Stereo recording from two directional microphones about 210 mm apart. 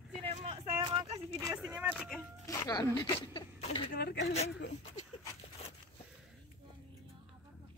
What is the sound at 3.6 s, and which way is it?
Speech, 25° left (ahead or behind).